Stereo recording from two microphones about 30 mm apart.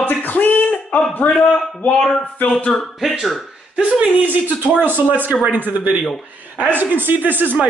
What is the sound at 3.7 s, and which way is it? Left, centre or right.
Speech, right.